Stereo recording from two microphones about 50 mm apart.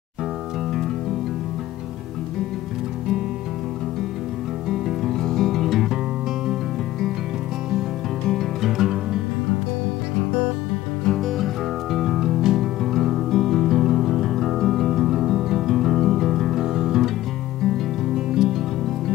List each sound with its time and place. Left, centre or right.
4.6 s music: centre
8.6 s music: centre
11.1 s music: centre
12.8 s music: centre
18.1 s music: centre